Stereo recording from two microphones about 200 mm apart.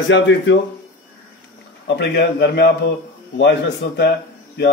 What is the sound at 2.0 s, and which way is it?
Speech, 60° left (ahead or behind).